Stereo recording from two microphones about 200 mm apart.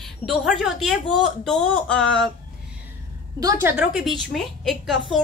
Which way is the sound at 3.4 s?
20° right (ahead or behind).